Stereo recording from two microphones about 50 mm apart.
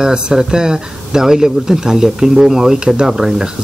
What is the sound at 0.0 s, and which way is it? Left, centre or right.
Speech, centre.